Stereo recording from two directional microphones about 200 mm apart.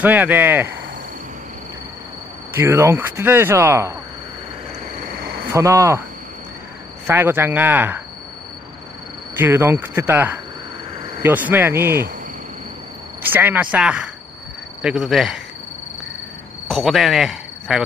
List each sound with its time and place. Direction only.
0.0 s speech: 10° right (ahead or behind)
2.5 s speech: 10° right (ahead or behind)
5.2 s cricket: 50° right (ahead or behind)
5.5 s speech: 15° right (ahead or behind)
7.1 s speech: 10° right (ahead or behind)
9.3 s speech: 10° right (ahead or behind)
13.2 s speech: 10° right (ahead or behind)
16.6 s speech: centre (ahead or behind)